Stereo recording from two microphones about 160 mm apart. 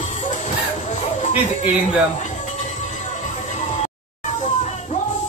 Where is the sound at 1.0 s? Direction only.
40° left (ahead or behind).